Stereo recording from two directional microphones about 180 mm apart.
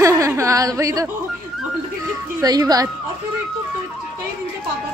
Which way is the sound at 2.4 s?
20° right (ahead or behind).